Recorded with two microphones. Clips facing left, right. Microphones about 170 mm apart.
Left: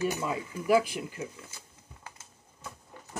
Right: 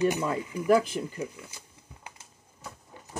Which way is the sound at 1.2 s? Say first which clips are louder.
Right 3 dB; 15° right (ahead or behind).